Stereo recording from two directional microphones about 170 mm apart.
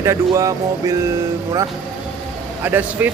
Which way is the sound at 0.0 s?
15° right (ahead or behind).